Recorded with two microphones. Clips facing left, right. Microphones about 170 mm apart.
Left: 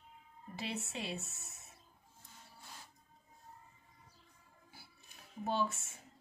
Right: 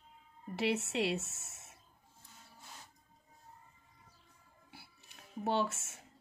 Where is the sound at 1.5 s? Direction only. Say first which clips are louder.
Right 1 dB; 70° right (ahead or behind).